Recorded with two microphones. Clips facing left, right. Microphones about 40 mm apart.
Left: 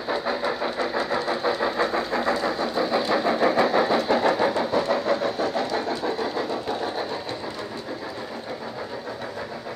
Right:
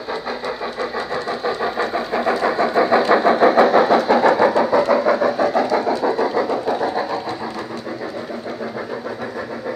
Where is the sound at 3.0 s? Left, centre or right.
Right.